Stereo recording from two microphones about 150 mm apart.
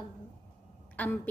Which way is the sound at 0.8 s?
10° left (ahead or behind).